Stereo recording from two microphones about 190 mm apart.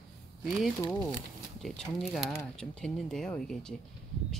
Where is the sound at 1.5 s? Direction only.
Centre (ahead or behind).